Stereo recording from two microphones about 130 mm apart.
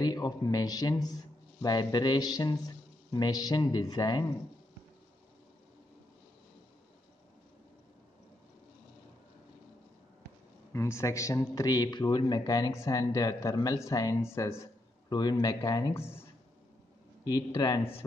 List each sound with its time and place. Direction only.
0.0 s a man's voice: 30° left (ahead or behind)
10.7 s a man's voice: 20° left (ahead or behind)
15.0 s a man's voice: 30° left (ahead or behind)
17.3 s a man's voice: 30° left (ahead or behind)